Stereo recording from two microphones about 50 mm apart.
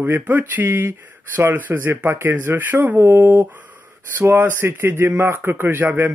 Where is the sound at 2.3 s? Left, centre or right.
Right.